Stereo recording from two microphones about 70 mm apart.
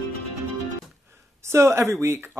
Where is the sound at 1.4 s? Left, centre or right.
Right.